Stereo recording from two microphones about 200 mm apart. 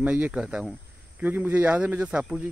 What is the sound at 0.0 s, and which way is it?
Speech, 5° right (ahead or behind).